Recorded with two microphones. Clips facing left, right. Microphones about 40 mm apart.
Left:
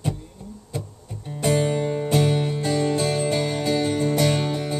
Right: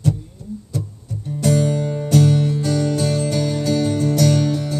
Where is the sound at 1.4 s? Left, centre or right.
Left.